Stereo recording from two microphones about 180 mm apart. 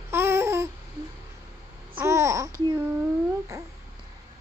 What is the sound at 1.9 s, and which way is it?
Babbling, 15° right (ahead or behind).